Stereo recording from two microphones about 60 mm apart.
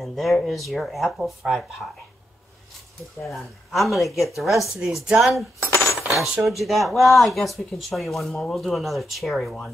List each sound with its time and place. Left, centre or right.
0.0 s speech: centre
3.3 s speech: centre
5.7 s coin: left
5.9 s cutlery: centre
6.6 s speech: centre